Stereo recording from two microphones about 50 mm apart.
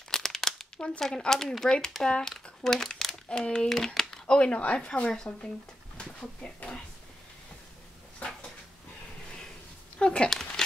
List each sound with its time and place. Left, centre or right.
0.1 s crumpling: centre
0.7 s speech: centre
3.6 s speech: centre
4.3 s speech: left
9.9 s a child's voice: centre